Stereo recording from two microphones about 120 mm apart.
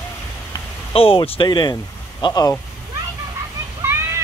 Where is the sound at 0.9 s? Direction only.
50° left (ahead or behind); by 2.5 s 30° left (ahead or behind).